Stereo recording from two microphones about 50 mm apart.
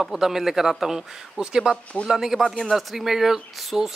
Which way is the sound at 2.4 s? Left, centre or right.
Centre.